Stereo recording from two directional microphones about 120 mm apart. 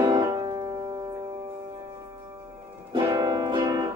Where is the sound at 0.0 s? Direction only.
30° right (ahead or behind).